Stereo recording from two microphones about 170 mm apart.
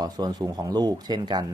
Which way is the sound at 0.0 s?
25° right (ahead or behind).